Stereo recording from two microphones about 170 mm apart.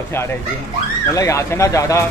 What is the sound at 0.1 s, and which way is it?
A man's voice, 15° left (ahead or behind).